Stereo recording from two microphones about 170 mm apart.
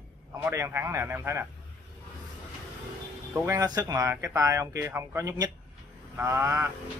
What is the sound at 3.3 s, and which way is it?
Speech, 15° right (ahead or behind).